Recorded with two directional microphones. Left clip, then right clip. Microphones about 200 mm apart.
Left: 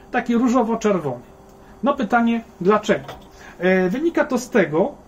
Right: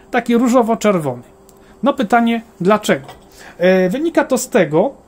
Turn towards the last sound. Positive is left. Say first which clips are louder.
# right 5 dB
turn(degrees=-50)  # may be behind; listen again after turning